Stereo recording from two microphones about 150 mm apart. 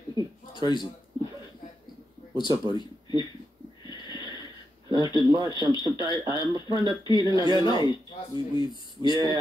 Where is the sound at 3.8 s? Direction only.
30° left (ahead or behind).